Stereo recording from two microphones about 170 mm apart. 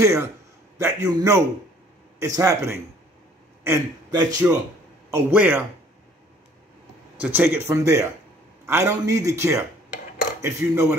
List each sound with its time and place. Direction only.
0.0 s a man's voice: 15° right (ahead or behind)
7.2 s a man's voice: 10° right (ahead or behind)